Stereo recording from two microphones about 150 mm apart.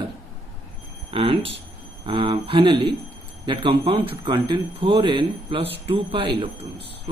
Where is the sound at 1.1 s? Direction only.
40° right (ahead or behind).